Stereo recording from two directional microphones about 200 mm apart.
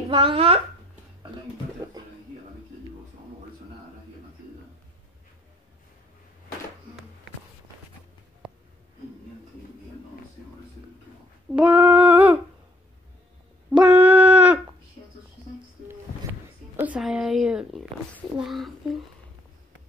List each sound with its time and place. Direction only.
0.1 s a woman's voice: 25° right (ahead or behind)
11.5 s female singing: 10° right (ahead or behind)
13.8 s a sound: 5° right (ahead or behind)
16.7 s speech: 5° right (ahead or behind)